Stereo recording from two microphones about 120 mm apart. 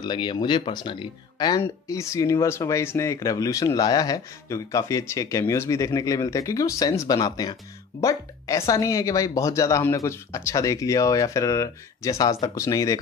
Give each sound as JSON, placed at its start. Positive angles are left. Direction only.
{"t": 0.0, "sound": "speech", "side_deg": 40}
{"t": 1.6, "sound": "speech", "side_deg": 25}